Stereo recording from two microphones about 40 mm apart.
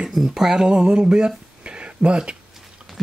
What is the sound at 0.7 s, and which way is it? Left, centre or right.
Speech, right.